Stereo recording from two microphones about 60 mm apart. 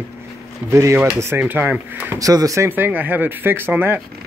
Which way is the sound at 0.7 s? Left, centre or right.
Right.